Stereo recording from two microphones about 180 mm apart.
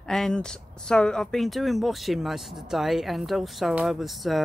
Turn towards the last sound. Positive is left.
turn(degrees=0)  # may be behind; listen again after turning